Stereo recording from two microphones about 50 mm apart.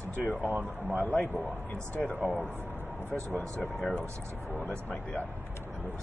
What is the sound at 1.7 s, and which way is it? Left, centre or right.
Speech, left.